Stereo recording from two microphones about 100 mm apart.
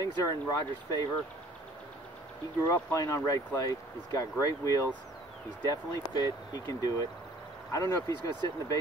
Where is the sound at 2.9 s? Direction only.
30° left (ahead or behind).